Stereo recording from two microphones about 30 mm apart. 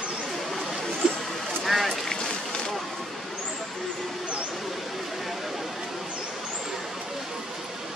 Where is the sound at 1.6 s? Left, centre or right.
Centre.